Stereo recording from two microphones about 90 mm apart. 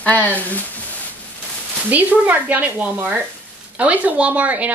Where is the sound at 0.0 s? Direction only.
15° left (ahead or behind).